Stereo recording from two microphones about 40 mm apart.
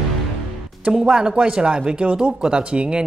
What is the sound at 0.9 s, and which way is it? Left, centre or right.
A woman's voice, centre.